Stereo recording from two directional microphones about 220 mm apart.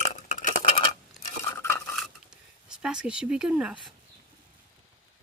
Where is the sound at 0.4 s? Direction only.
30° left (ahead or behind).